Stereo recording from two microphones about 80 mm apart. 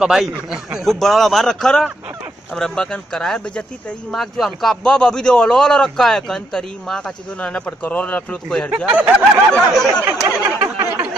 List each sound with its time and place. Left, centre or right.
0.0 s a man's voice: centre
8.7 s speech: centre
9.5 s a man's voice: centre
10.6 s a sound: right